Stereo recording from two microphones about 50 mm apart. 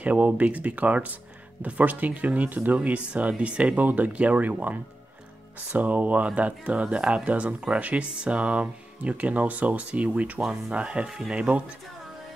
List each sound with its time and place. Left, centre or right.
0.0 s speech: right
3.7 s speech: right
5.8 s speech: right
11.1 s speech: centre
11.3 s speech: right